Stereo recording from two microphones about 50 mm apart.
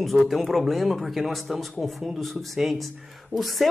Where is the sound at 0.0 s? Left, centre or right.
Centre.